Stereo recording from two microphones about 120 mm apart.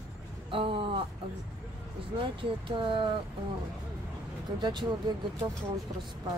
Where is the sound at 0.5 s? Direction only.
50° right (ahead or behind).